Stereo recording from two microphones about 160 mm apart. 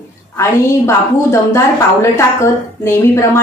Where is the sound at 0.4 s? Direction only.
15° left (ahead or behind).